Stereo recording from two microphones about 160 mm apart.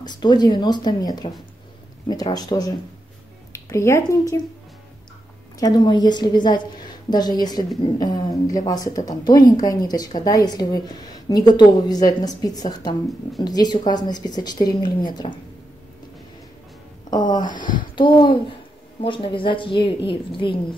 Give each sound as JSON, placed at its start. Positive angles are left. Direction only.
{"t": 0.0, "sound": "a woman's voice", "side_deg": 25}
{"t": 5.6, "sound": "a woman's voice", "side_deg": 25}
{"t": 17.1, "sound": "a woman's voice", "side_deg": 25}